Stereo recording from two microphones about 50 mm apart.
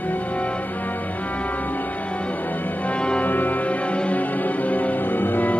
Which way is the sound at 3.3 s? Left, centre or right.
Left.